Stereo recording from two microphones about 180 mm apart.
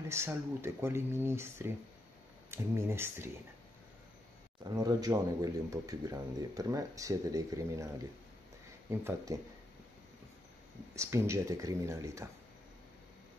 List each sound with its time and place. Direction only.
0.1 s speech: 15° right (ahead or behind)
4.7 s speech: 20° right (ahead or behind)
9.0 s speech: 20° right (ahead or behind)
11.0 s speech: 15° right (ahead or behind)